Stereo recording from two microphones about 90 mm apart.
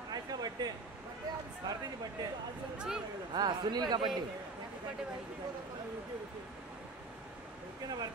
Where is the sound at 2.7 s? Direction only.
5° right (ahead or behind).